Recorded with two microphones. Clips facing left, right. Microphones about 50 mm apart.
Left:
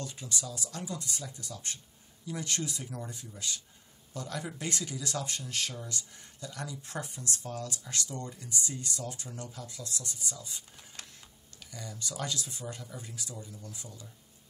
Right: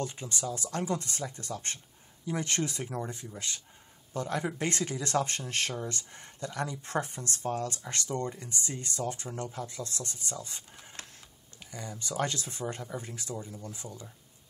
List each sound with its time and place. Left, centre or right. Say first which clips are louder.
0.0 s speech: right 4 dB; right
11.6 s speech: right 2 dB; right